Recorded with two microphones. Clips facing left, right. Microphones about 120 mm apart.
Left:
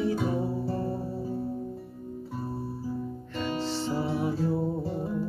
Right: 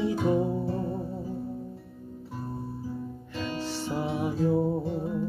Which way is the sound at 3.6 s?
15° right (ahead or behind).